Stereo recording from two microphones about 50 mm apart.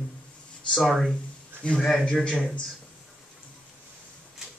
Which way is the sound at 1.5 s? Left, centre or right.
Right.